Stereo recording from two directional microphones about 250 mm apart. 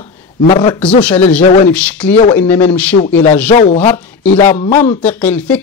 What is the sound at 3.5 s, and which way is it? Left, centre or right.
Speech, left.